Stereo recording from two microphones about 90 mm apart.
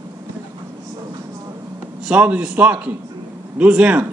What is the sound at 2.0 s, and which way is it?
A man's voice, 15° right (ahead or behind).